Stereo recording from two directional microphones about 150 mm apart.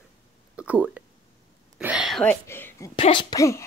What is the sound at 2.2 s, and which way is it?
Speech, 15° left (ahead or behind).